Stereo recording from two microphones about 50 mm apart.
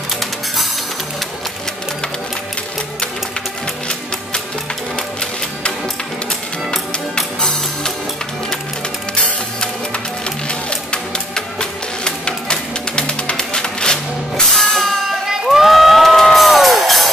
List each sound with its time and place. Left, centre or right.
6.7 s music: centre
10.7 s music: centre
14.5 s music: centre
15.4 s crowd: centre